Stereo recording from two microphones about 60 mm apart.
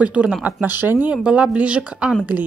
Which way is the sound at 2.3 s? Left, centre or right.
Right.